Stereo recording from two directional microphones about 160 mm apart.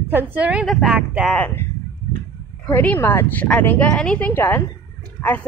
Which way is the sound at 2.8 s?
15° left (ahead or behind).